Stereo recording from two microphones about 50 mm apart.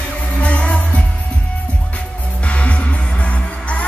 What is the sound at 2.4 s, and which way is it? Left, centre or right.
Music, left.